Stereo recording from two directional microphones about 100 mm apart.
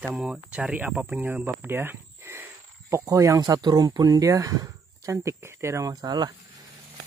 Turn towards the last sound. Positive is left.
turn(degrees=-40)  # may be behind; listen again after turning